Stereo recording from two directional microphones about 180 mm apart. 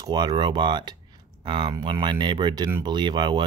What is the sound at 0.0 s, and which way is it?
Speech, 25° right (ahead or behind).